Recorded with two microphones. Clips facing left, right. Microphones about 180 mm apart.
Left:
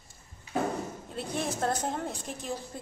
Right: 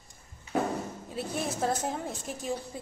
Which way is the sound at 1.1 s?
5° right (ahead or behind).